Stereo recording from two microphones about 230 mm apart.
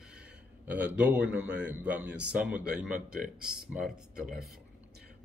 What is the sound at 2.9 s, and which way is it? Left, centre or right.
Speech, right.